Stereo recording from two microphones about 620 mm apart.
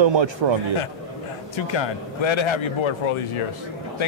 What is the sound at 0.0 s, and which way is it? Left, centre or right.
Speech, right.